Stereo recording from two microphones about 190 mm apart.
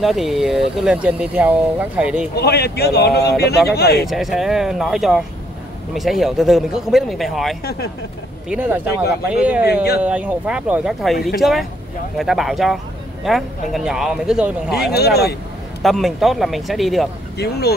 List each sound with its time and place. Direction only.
0.0 s speech: centre (ahead or behind)
2.3 s speech: 60° left (ahead or behind)
4.1 s speech: centre (ahead or behind)
12.2 s speech: centre (ahead or behind)
15.0 s speech: 55° left (ahead or behind)
15.8 s speech: centre (ahead or behind)
17.4 s speech: 60° left (ahead or behind)